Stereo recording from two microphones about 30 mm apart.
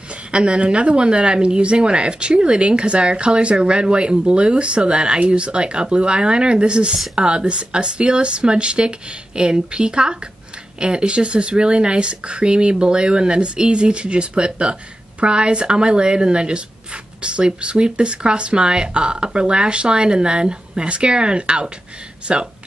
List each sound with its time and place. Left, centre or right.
0.3 s speech: right